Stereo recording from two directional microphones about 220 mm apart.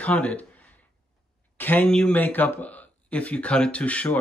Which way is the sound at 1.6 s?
10° left (ahead or behind).